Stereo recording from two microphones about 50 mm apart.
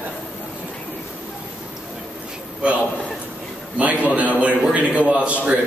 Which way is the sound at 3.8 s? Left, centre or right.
Right.